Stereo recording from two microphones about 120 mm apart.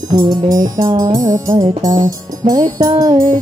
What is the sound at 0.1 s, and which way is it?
Music, 35° right (ahead or behind).